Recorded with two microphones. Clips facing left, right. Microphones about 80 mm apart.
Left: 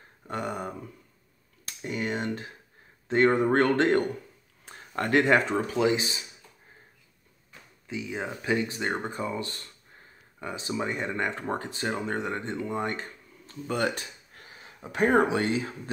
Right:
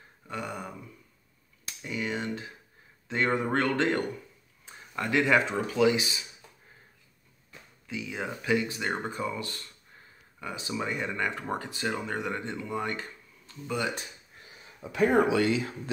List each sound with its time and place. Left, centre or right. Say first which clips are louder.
0.3 s speech: left 4 dB; left
1.8 s speech: left 2 dB; left
3.5 s speech: left 4 dB; left
7.9 s speech: left 1 dB; left
14.9 s speech: left 1 dB; left